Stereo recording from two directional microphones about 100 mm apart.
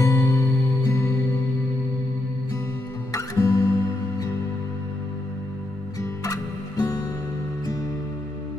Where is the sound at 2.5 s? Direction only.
30° left (ahead or behind).